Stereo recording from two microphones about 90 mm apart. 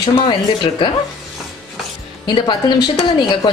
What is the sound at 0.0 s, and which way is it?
Speech, 60° left (ahead or behind).